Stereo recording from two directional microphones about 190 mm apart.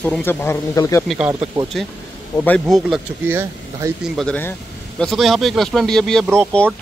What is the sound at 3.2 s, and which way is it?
Speech, 10° right (ahead or behind).